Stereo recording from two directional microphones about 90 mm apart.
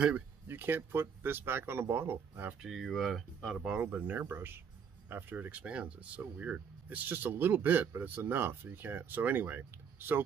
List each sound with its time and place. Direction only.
0.5 s speech: 25° right (ahead or behind)
2.6 s speech: centre (ahead or behind)
3.4 s speech: 10° right (ahead or behind)